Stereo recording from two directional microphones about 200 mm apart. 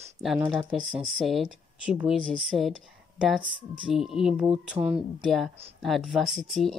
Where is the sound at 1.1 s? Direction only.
Centre (ahead or behind).